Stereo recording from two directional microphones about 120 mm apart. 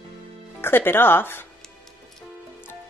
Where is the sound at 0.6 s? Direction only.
20° left (ahead or behind).